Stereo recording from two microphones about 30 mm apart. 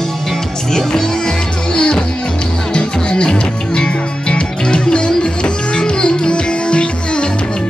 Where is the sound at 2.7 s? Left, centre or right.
Left.